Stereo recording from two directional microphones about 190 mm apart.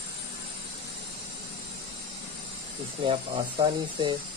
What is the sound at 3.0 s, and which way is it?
Speech, 25° right (ahead or behind).